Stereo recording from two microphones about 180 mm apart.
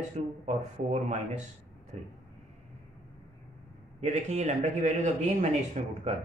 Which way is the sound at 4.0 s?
40° right (ahead or behind).